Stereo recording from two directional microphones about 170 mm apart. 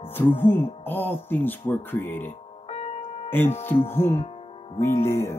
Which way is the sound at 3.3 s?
10° left (ahead or behind).